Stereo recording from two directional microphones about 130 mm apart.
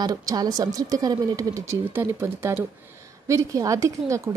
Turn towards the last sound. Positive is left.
turn(degrees=-25)  # may be behind; listen again after turning